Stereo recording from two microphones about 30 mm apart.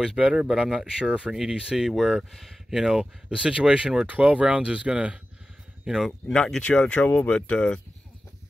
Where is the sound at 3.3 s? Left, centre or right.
Right.